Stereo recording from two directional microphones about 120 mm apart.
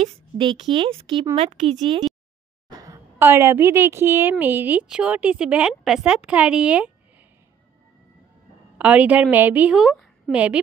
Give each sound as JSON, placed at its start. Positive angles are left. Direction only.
{"t": 0.0, "sound": "speech", "side_deg": -50}
{"t": 1.3, "sound": "speech", "side_deg": -65}
{"t": 2.7, "sound": "a woman's voice", "side_deg": -30}
{"t": 8.7, "sound": "a woman's voice", "side_deg": -10}
{"t": 9.8, "sound": "a sound", "side_deg": 0}
{"t": 10.3, "sound": "a woman's voice", "side_deg": -10}